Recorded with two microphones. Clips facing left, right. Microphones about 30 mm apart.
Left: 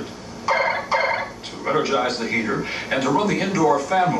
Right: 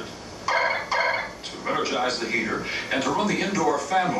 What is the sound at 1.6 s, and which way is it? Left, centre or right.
Speech, centre.